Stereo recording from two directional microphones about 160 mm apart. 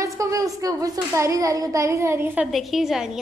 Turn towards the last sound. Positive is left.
turn(degrees=-5)  # may be behind; listen again after turning